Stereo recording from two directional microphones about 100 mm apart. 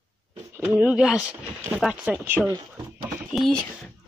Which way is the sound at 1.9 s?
15° right (ahead or behind).